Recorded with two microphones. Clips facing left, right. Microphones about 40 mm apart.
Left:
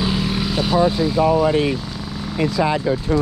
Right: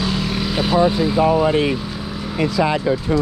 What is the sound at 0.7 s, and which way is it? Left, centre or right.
Speech, right.